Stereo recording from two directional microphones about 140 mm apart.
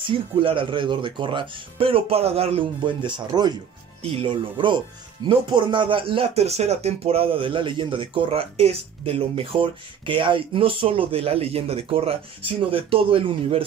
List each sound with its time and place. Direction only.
0.0 s speech: 40° right (ahead or behind)